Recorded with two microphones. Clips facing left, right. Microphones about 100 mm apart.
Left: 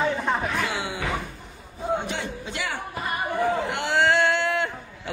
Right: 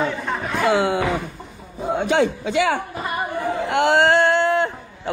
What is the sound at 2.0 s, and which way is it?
Speech, 90° right.